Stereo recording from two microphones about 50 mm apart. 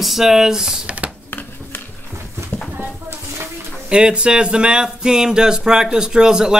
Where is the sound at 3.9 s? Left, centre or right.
Centre.